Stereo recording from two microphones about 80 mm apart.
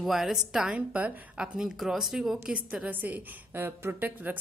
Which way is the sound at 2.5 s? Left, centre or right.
Centre.